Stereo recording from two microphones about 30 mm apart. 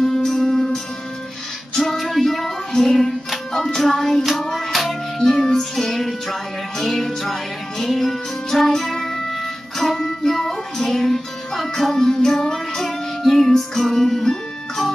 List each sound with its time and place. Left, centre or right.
0.0 s music: centre
1.8 s music: centre
3.8 s child singing: centre
4.5 s music: centre
5.2 s music: centre
11.9 s music: centre
12.7 s child singing: centre
13.6 s music: centre